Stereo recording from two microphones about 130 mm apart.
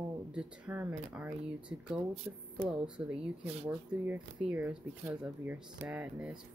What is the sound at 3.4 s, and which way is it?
Speech, 50° right (ahead or behind).